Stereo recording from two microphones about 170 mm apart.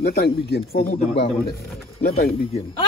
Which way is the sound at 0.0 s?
70° left (ahead or behind).